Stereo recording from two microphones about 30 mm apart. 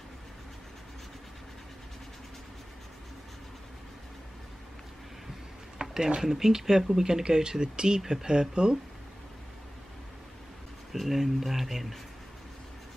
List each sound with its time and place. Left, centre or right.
5.8 s a sound: right
6.2 s speech: centre
10.9 s speech: centre